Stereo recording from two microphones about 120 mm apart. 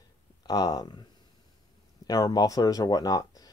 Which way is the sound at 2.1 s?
30° left (ahead or behind).